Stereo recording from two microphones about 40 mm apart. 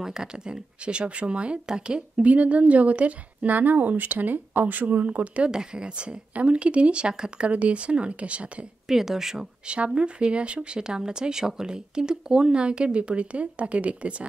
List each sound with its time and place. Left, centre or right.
0.0 s speech: centre
2.2 s speech: right
5.5 s speech: centre
8.8 s speech: centre
9.9 s speech: right